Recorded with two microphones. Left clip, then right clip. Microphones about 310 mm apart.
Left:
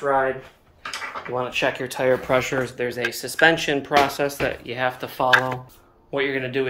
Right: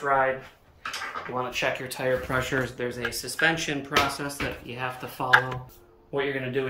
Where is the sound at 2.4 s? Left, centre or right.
Centre.